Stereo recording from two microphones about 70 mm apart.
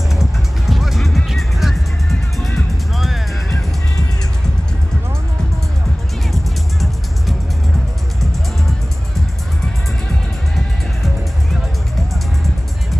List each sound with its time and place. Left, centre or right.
0.1 s music: centre
6.3 s music: centre